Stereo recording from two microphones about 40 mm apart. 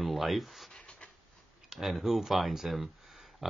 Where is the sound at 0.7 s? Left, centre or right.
Left.